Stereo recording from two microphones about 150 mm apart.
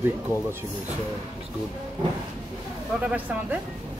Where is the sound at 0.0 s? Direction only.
15° right (ahead or behind).